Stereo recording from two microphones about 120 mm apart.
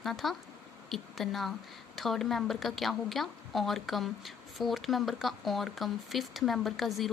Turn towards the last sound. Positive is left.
turn(degrees=0)  # may be behind; listen again after turning